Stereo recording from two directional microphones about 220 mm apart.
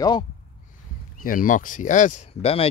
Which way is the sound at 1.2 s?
40° left (ahead or behind).